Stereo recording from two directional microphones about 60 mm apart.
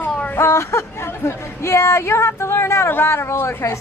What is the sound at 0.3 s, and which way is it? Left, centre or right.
A woman's voice, left.